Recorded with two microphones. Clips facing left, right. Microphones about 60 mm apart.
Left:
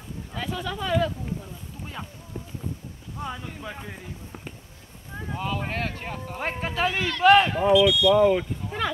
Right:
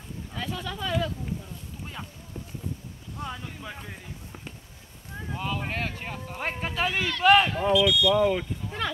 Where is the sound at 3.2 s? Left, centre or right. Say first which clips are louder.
Left 2 dB; centre.